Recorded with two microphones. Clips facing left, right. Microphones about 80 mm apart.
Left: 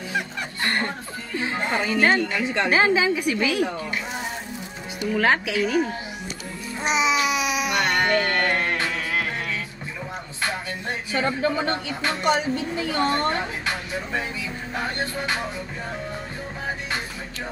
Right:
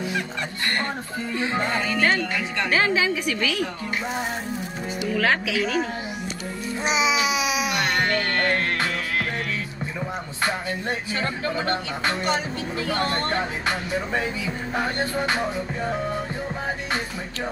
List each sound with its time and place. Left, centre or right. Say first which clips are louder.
1.6 s a woman's voice: left 3 dB; centre
5.1 s speech: left 2 dB; centre
6.8 s babbling: left 1 dB; centre
8.0 s music: left 2 dB; centre
11.1 s speech: left 8 dB; centre
13.0 s speech: left 6 dB; centre